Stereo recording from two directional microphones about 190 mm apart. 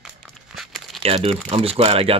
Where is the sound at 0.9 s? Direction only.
Centre (ahead or behind).